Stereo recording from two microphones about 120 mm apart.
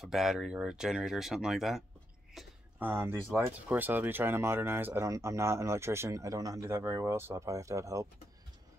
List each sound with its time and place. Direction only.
0.0 s speech: 5° right (ahead or behind)
2.4 s a sound: centre (ahead or behind)
2.8 s speech: 20° right (ahead or behind)